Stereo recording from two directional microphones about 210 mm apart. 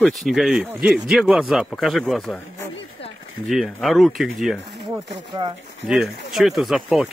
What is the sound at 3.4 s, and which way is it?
Speech, centre (ahead or behind).